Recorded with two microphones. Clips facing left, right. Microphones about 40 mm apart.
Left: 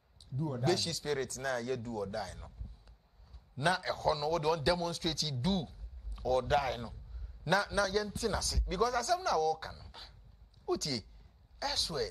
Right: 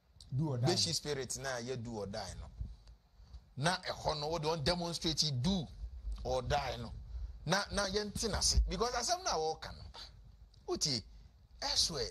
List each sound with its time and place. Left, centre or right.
0.2 s a sound: centre
0.6 s speech: centre
2.0 s speech: centre
3.7 s speech: centre
7.5 s speech: left
7.8 s speech: centre